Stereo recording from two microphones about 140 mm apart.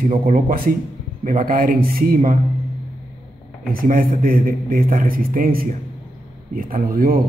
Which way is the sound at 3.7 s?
90° right.